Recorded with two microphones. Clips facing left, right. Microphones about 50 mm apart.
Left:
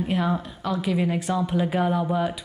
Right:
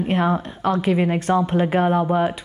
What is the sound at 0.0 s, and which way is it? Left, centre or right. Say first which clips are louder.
Speech: right 4 dB; right.